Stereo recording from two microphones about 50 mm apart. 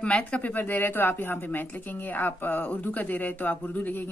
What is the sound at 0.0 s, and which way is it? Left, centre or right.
Speech, left.